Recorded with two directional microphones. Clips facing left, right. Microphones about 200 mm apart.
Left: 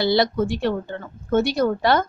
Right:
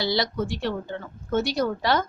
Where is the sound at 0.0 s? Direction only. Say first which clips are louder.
Left 6 dB; 55° left (ahead or behind).